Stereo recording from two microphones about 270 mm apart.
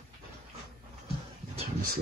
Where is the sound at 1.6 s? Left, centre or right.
Right.